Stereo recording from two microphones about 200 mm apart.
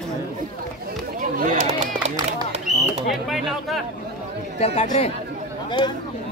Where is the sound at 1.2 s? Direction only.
40° right (ahead or behind).